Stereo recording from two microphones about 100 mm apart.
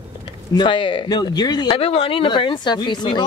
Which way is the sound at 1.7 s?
80° left.